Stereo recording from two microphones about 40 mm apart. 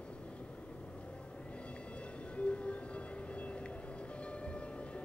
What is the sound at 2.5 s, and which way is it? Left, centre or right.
Music, left.